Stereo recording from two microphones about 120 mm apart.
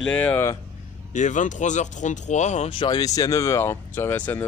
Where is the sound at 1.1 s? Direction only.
90° left; by 2.7 s 70° left (ahead or behind).